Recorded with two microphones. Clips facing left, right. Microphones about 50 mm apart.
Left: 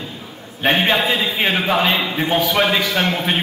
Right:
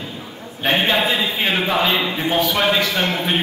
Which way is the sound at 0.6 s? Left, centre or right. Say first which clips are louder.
Left 1 dB; centre.